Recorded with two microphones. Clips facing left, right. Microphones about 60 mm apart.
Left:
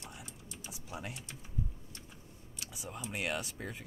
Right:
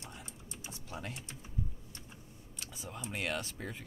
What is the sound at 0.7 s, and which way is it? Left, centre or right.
Speech, centre.